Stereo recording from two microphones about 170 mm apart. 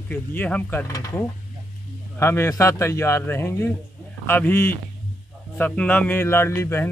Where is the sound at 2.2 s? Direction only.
15° left (ahead or behind).